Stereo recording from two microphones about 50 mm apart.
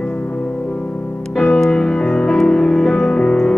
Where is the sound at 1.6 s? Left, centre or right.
Centre.